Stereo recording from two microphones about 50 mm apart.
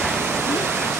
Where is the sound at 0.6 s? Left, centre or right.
Right.